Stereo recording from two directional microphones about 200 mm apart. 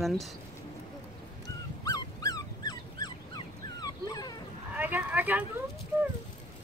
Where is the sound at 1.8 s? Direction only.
20° left (ahead or behind).